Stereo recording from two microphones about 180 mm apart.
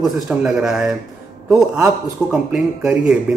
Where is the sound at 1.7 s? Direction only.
15° right (ahead or behind).